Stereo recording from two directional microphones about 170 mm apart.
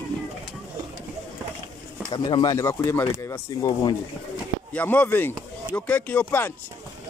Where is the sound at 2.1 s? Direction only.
25° left (ahead or behind).